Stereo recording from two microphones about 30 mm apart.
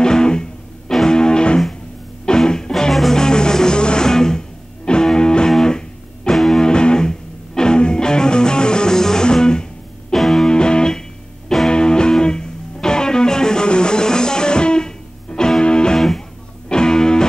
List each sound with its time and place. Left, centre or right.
0.0 s music: left
2.9 s music: centre
3.2 s music: left
6.3 s music: centre
6.6 s music: left
10.1 s music: centre
10.5 s music: left